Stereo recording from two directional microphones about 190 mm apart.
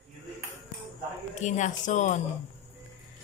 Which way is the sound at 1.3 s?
40° left (ahead or behind).